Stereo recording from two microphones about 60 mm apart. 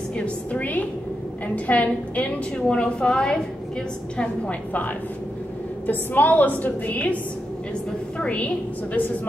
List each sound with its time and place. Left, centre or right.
0.2 s a woman's voice: left
4.2 s a woman's voice: left
8.2 s a woman's voice: left